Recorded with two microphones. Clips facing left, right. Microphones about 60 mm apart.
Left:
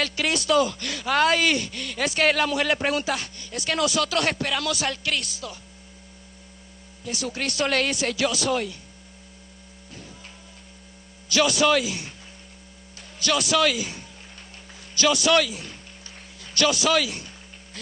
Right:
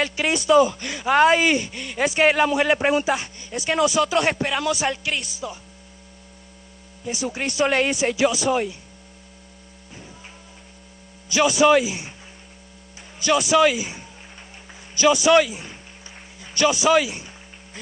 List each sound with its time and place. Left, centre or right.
0.0 s speech: centre
7.1 s speech: centre
11.3 s speech: centre
13.2 s speech: centre
16.5 s speech: centre